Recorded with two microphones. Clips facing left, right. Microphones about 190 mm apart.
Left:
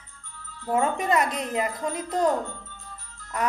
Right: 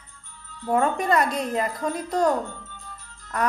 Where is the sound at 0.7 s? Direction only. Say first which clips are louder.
Right 2 dB; 15° left (ahead or behind).